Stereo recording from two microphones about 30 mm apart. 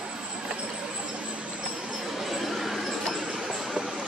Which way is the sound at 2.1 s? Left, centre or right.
Centre.